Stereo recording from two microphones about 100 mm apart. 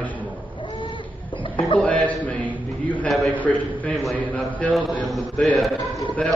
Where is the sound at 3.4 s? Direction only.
15° left (ahead or behind).